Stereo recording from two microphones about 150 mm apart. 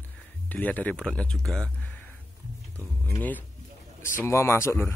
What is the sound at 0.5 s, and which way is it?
Speech, 10° left (ahead or behind).